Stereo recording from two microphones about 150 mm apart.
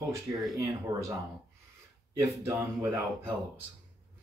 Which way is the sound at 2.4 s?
20° right (ahead or behind).